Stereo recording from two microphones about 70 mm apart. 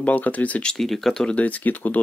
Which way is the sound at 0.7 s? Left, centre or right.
Centre.